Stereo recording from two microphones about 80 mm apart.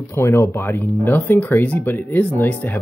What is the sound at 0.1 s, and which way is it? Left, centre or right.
Speech, left.